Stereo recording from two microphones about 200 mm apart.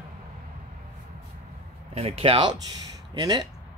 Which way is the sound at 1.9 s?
30° right (ahead or behind).